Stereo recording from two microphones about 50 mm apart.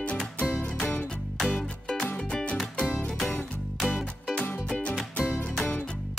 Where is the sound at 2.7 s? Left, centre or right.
Left.